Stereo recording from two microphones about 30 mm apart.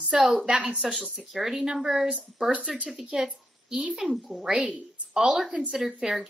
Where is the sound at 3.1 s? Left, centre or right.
Right.